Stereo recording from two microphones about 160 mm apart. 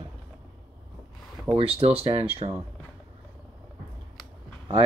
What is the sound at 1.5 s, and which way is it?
Speech, 35° right (ahead or behind).